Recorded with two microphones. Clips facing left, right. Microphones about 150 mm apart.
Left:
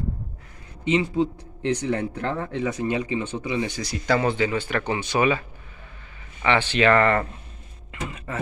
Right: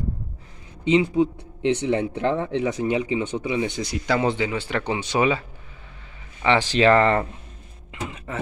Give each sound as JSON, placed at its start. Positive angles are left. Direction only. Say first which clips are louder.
{"t": 0.8, "sound": "speech", "louder": "right 3 dB", "side_deg": -15}
{"t": 6.6, "sound": "speech", "louder": "right 2 dB", "side_deg": -35}
{"t": 6.9, "sound": "speech", "louder": "right 1 dB", "side_deg": -25}
{"t": 7.9, "sound": "speech", "louder": "even", "side_deg": -15}